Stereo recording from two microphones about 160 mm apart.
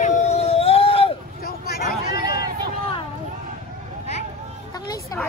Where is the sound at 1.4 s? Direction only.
70° left (ahead or behind).